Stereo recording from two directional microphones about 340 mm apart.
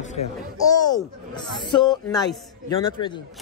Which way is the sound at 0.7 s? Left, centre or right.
Centre.